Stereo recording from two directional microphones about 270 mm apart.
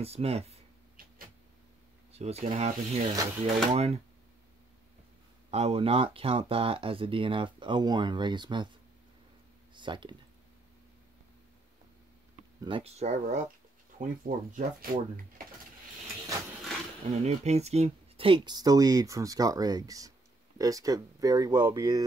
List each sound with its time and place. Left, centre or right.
0.0 s a sound: right
2.1 s speech: right
5.5 s speech: right
9.8 s speech: centre
12.6 s speech: right
17.2 s speech: right